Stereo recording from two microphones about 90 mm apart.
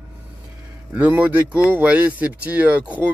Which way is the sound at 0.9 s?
15° right (ahead or behind).